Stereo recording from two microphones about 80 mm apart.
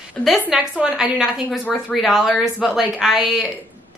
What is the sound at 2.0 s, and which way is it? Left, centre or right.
Speech, centre.